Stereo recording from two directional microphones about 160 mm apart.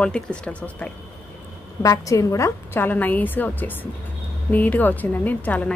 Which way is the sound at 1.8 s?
20° left (ahead or behind).